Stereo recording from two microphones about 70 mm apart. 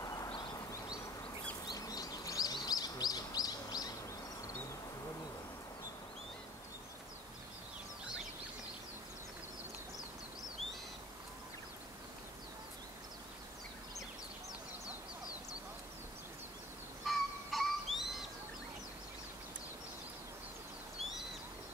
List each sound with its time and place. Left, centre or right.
0.0 s a sound: left
1.7 s bird: left
17.0 s owl: centre